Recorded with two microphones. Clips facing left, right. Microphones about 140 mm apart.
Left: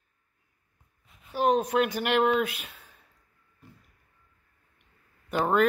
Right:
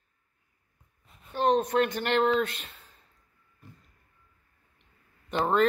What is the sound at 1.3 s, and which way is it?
Speech, 10° left (ahead or behind).